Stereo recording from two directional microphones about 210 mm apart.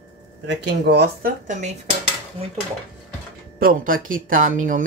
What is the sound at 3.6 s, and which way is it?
Speech, 45° right (ahead or behind).